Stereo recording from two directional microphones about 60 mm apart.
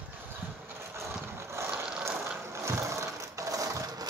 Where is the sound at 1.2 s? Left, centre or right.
Right.